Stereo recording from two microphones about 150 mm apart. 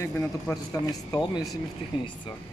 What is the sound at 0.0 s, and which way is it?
Speech, 20° left (ahead or behind).